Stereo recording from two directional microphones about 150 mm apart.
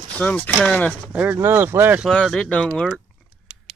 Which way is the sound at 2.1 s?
5° left (ahead or behind).